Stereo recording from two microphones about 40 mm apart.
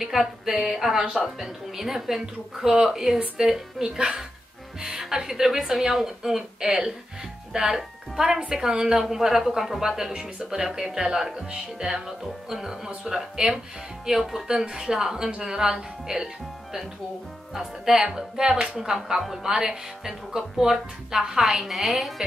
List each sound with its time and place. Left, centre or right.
0.0 s a woman's voice: centre
17.6 s a woman's voice: centre